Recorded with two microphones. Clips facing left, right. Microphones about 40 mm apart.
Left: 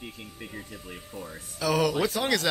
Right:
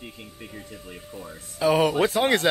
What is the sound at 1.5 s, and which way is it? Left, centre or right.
Speech, right.